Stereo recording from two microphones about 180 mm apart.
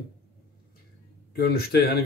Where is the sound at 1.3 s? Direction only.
65° left (ahead or behind).